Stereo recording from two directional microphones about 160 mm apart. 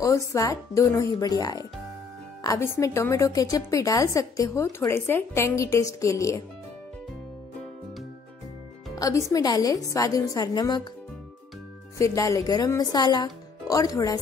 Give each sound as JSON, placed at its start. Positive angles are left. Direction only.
{"t": 0.0, "sound": "a woman's voice", "side_deg": 20}
{"t": 8.9, "sound": "music", "side_deg": 20}
{"t": 9.3, "sound": "a woman's voice", "side_deg": 25}
{"t": 12.0, "sound": "a woman's voice", "side_deg": 20}